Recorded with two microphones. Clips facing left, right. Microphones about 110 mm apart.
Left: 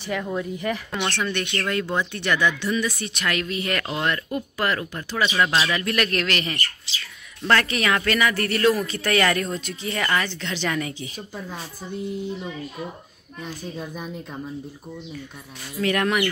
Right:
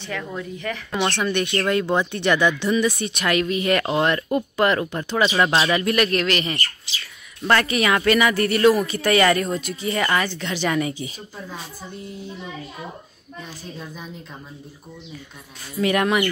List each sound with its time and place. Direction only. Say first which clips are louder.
0.0 s speech: left 3 dB; 10° left (ahead or behind)
1.0 s speech: right 5 dB; 15° right (ahead or behind)
3.8 s speech: right 5 dB; 30° right (ahead or behind)
5.9 s a man's voice: right 4 dB; 5° right (ahead or behind)
15.8 s speech: right 2 dB; 10° right (ahead or behind)